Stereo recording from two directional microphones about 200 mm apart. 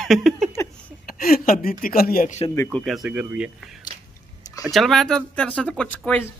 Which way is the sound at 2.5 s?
15° left (ahead or behind).